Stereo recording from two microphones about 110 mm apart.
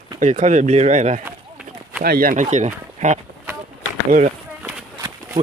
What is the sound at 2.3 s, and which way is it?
Speech, 90° right.